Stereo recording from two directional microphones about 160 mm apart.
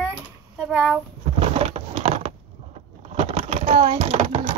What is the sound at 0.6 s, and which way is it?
Speech, 5° left (ahead or behind).